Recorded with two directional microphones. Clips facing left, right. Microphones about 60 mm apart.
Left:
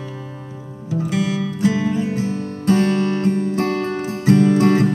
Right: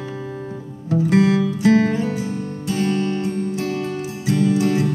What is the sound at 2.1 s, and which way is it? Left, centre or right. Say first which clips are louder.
Music: left 2 dB; left.